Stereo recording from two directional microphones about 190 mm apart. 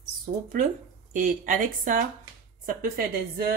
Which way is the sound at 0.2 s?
45° right (ahead or behind).